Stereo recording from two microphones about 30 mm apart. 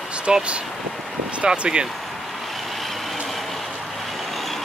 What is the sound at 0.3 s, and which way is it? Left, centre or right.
Speech, right.